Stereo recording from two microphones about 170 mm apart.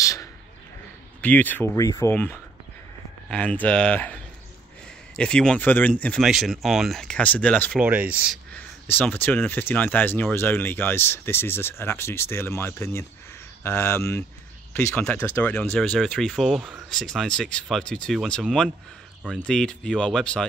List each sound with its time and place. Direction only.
0.0 s a sound: 20° left (ahead or behind)
1.2 s speech: 10° left (ahead or behind)
7.8 s speech: 10° right (ahead or behind)
8.5 s speech: 10° left (ahead or behind)